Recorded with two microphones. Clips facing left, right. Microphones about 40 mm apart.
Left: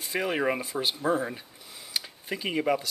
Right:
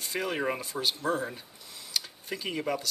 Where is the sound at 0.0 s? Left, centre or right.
Centre.